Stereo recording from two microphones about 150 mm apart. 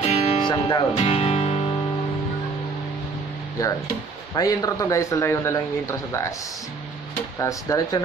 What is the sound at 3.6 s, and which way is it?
Speech, 20° left (ahead or behind).